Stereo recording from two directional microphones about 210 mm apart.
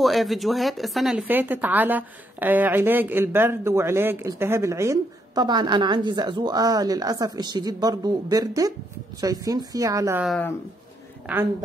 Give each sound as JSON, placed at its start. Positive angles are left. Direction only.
{"t": 0.0, "sound": "speech", "side_deg": 0}
{"t": 10.2, "sound": "speech", "side_deg": 0}